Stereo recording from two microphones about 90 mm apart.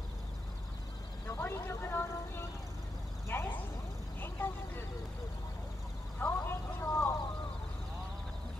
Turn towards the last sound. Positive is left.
turn(degrees=30)  # may be behind; listen again after turning